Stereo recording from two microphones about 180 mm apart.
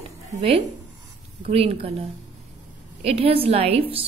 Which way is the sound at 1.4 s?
35° right (ahead or behind).